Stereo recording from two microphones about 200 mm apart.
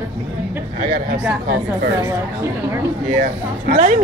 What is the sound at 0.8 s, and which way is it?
Speech, 45° right (ahead or behind).